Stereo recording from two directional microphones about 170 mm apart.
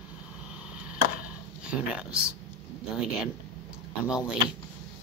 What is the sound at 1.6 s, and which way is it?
Speech, 5° right (ahead or behind).